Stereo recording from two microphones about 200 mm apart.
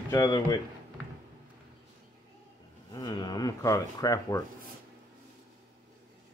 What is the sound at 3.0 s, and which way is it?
Speech, 20° left (ahead or behind).